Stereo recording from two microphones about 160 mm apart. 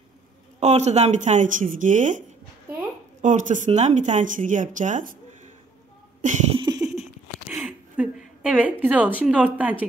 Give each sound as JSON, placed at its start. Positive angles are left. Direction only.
{"t": 0.6, "sound": "speech", "side_deg": -45}
{"t": 6.5, "sound": "a sound", "side_deg": -30}
{"t": 7.4, "sound": "gasp", "side_deg": -5}
{"t": 8.8, "sound": "a woman's voice", "side_deg": -10}